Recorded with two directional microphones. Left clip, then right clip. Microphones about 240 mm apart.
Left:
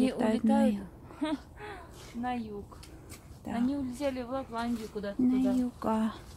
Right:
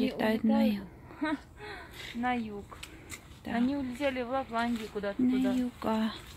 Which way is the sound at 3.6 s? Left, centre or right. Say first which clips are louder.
Right 1 dB; right.